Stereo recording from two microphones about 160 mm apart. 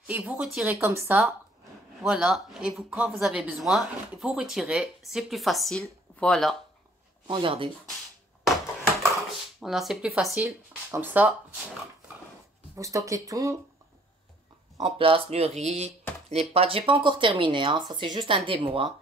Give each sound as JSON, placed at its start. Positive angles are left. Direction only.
{"t": 0.0, "sound": "speech", "side_deg": -10}
{"t": 2.0, "sound": "speech", "side_deg": 0}
{"t": 7.2, "sound": "speech", "side_deg": -35}
{"t": 9.6, "sound": "speech", "side_deg": 0}
{"t": 12.7, "sound": "speech", "side_deg": -20}
{"t": 14.8, "sound": "speech", "side_deg": -35}